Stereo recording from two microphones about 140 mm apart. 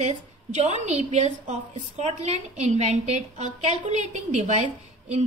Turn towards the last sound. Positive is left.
turn(degrees=-50)  # may be behind; listen again after turning